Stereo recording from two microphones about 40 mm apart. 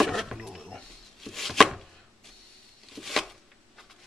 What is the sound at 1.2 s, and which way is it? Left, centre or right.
Chopping, centre.